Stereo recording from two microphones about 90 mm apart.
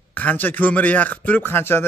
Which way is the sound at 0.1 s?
20° left (ahead or behind).